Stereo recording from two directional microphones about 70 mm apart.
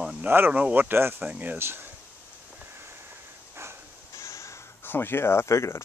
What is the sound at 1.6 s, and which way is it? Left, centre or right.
Speech, right.